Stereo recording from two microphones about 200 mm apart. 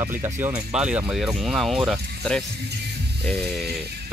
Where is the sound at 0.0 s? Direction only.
10° right (ahead or behind).